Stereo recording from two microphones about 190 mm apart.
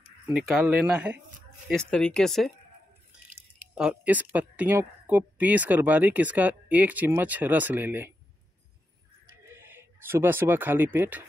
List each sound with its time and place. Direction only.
0.3 s speech: 5° right (ahead or behind)
1.7 s speech: 5° left (ahead or behind)
3.7 s speech: 5° right (ahead or behind)
9.4 s speech: 10° right (ahead or behind)